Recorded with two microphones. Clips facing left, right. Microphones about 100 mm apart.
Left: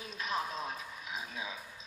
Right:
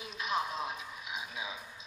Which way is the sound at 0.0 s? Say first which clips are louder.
Right 2 dB; 40° left (ahead or behind).